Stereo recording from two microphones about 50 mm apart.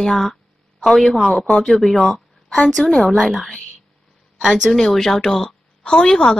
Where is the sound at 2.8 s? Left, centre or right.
Centre.